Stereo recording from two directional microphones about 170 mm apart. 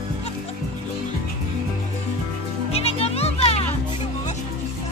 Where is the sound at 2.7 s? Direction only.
35° left (ahead or behind).